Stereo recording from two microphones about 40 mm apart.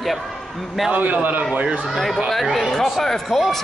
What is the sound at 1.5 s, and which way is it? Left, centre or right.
Speech, right.